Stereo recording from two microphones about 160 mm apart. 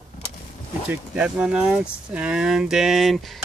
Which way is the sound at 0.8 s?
5° right (ahead or behind).